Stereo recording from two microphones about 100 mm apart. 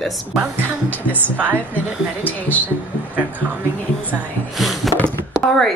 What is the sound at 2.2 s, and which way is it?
Speech, 15° left (ahead or behind).